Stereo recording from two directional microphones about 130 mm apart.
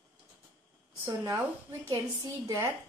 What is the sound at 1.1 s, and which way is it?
A woman's voice, 25° right (ahead or behind).